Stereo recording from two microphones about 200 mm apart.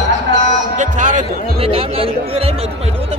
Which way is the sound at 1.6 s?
30° right (ahead or behind).